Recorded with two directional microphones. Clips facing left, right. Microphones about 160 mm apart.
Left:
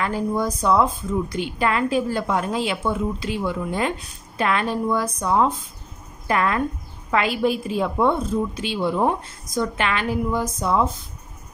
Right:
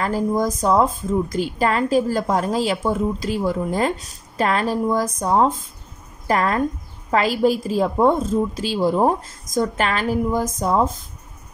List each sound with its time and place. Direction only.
0.0 s a woman's voice: 40° right (ahead or behind)